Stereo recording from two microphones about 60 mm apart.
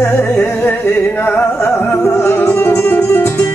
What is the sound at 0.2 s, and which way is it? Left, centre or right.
Music, left.